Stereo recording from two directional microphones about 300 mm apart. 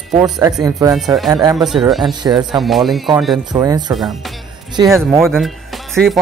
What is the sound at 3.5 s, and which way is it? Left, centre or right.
Speech, centre.